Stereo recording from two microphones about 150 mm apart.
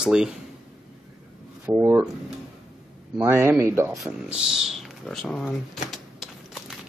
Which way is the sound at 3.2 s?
15° right (ahead or behind).